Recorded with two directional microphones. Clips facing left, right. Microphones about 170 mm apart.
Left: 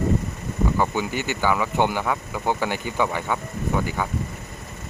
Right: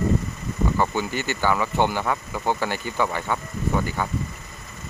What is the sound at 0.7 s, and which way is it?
Speech, 15° left (ahead or behind).